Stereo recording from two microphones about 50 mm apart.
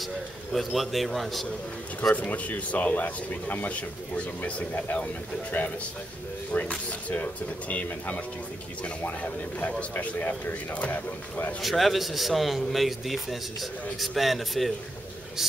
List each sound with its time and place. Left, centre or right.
0.0 s a man's voice: centre
2.1 s speech: left
10.1 s speech: left
11.6 s a man's voice: centre